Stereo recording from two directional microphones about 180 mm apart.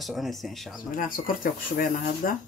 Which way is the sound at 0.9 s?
50° left (ahead or behind).